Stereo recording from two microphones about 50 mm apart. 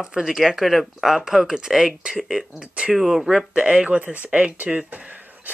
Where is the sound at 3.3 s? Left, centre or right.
Right.